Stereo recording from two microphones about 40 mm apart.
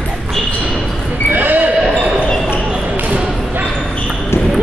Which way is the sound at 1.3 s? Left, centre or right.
Right.